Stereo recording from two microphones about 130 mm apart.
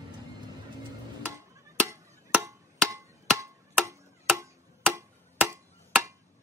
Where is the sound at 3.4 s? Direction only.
25° right (ahead or behind).